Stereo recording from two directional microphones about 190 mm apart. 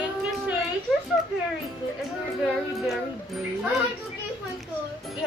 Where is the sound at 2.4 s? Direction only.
Centre (ahead or behind).